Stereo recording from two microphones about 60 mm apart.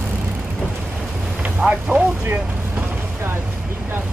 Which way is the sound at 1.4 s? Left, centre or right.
Right.